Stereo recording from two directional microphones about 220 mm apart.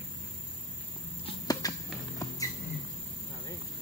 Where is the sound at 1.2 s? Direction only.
15° left (ahead or behind).